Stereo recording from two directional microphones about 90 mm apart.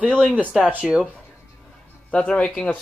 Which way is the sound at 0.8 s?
Centre (ahead or behind).